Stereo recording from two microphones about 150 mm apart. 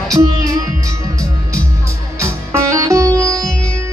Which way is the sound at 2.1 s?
20° right (ahead or behind).